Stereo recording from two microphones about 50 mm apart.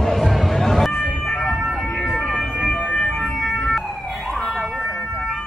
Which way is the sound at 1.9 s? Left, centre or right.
Centre.